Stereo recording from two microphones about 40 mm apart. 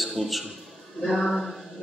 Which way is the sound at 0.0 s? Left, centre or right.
Centre.